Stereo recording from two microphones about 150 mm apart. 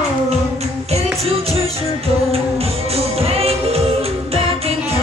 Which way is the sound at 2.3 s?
40° right (ahead or behind).